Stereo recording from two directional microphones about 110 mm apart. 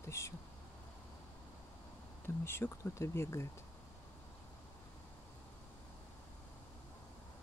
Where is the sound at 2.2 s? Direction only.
20° left (ahead or behind).